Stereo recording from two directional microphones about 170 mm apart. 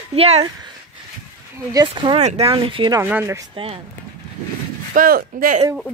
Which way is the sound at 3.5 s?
35° right (ahead or behind).